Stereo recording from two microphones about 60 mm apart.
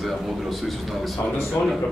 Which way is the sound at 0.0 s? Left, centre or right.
Centre.